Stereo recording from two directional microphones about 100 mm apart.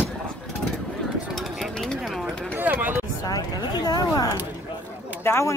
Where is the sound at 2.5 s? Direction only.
20° right (ahead or behind).